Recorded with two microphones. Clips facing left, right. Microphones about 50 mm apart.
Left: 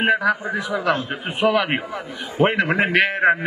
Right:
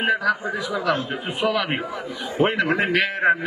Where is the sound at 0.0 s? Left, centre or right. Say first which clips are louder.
Left 2 dB; left.